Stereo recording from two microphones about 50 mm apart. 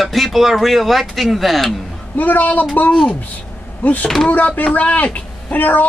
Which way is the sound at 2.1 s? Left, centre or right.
Left.